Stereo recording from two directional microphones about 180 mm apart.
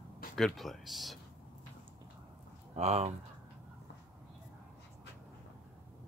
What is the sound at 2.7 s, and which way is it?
Speech, 35° right (ahead or behind).